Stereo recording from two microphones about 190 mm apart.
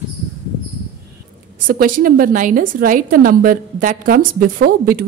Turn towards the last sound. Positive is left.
turn(degrees=-50)  # may be behind; listen again after turning